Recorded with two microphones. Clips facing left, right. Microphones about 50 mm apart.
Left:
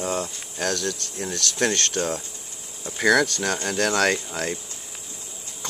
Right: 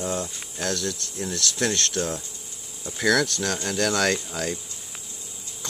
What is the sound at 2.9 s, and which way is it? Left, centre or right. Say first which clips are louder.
Speech: left 3 dB; centre.